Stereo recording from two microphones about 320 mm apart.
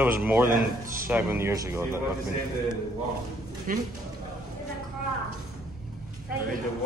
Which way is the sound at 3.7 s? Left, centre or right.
Right.